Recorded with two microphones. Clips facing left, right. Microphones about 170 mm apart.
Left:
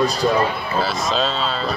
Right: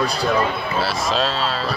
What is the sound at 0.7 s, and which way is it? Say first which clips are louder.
Speech: left 1 dB; centre (ahead or behind).